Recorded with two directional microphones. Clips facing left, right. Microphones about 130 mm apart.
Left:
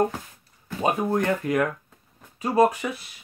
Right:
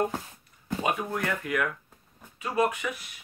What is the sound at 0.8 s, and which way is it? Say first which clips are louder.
Speech: left 7 dB; 35° left (ahead or behind).